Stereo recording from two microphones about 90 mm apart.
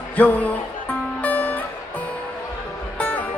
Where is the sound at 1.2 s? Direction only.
15° left (ahead or behind).